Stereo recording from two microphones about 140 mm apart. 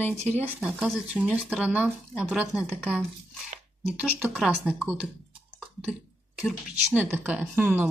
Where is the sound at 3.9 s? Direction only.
10° right (ahead or behind).